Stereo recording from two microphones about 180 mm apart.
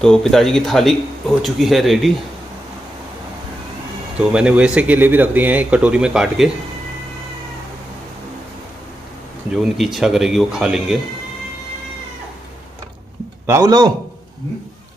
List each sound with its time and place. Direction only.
0.0 s speech: 5° left (ahead or behind)
4.2 s speech: 5° right (ahead or behind)
9.6 s speech: centre (ahead or behind)
13.5 s a man's voice: 20° right (ahead or behind)